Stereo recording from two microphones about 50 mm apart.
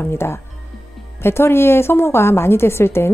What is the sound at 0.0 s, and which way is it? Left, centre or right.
Speech, left.